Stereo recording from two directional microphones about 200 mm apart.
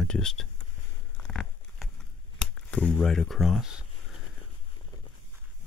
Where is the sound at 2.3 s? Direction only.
5° left (ahead or behind).